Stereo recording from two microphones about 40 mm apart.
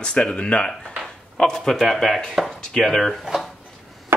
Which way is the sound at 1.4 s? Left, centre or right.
Centre.